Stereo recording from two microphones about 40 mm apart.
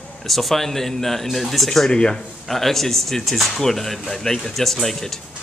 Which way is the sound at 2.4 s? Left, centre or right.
Centre.